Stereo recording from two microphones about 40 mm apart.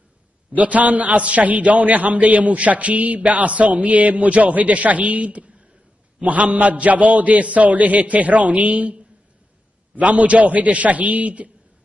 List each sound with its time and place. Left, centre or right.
0.5 s a man's voice: right